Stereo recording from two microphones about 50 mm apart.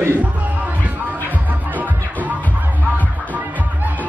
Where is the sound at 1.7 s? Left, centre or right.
Right.